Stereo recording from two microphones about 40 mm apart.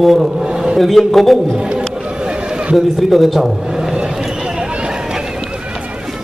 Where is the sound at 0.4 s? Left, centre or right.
Centre.